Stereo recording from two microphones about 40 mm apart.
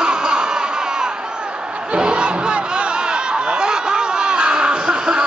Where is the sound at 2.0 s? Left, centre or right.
Right.